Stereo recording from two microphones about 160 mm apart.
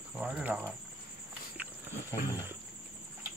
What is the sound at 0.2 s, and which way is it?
Speech, 10° right (ahead or behind).